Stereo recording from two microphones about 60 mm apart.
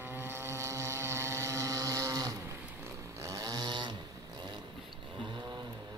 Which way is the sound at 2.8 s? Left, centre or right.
Right.